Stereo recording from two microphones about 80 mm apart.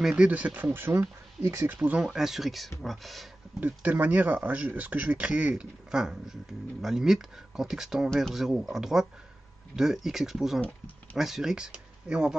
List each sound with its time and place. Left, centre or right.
0.0 s speech: centre
1.8 s speech: centre
3.6 s speech: right